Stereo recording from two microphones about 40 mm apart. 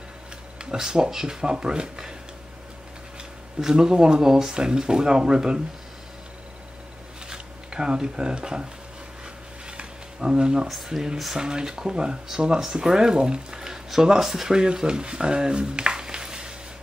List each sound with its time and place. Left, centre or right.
0.7 s speech: centre
3.6 s speech: centre
7.2 s speech: centre
9.7 s a sound: right
10.9 s speech: centre